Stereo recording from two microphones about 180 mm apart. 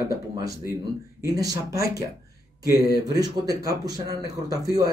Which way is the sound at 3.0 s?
20° right (ahead or behind).